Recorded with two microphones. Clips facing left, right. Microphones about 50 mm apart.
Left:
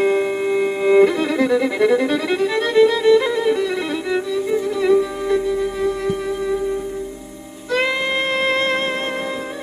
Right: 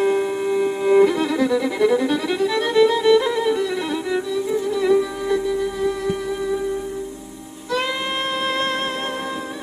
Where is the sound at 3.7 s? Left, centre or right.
Left.